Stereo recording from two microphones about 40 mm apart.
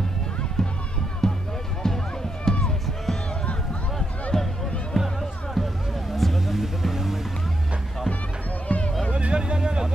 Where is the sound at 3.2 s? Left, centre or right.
Left.